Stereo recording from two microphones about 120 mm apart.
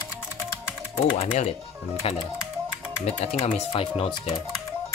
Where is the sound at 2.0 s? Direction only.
55° left (ahead or behind).